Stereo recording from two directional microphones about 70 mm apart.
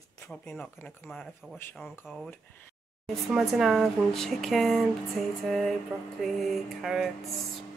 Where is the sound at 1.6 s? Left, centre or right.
Left.